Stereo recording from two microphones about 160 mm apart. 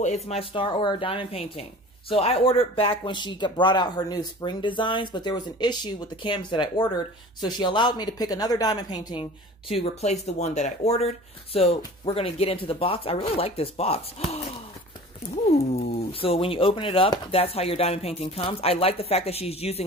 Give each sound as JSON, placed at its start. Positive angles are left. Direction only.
{"t": 0.0, "sound": "speech", "side_deg": 40}
{"t": 15.5, "sound": "speech", "side_deg": 45}